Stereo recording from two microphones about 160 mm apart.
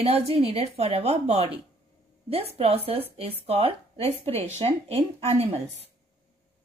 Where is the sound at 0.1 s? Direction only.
35° right (ahead or behind).